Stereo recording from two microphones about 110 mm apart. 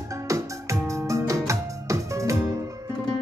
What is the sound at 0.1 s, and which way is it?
Music, 30° right (ahead or behind).